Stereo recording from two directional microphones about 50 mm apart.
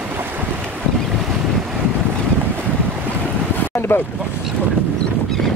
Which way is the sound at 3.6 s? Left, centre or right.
Left.